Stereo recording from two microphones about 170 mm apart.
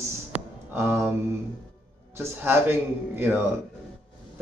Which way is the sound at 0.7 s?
15° right (ahead or behind).